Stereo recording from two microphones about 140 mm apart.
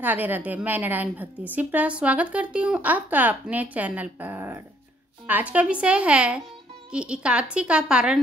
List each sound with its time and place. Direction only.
0.0 s a woman's voice: 15° right (ahead or behind)